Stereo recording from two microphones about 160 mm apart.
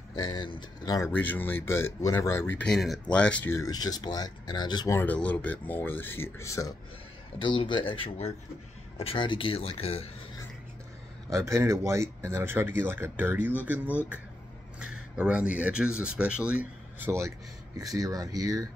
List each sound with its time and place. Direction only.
0.1 s speech: 25° left (ahead or behind)
1.1 s speech: 10° left (ahead or behind); by 4.9 s 25° left (ahead or behind)
4.9 s speech: 10° left (ahead or behind)
7.3 s speech: 30° left (ahead or behind)
11.3 s speech: 15° right (ahead or behind)
14.8 s speech: 5° right (ahead or behind)